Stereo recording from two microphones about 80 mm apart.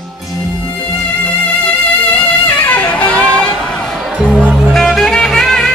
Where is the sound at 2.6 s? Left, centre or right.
Centre.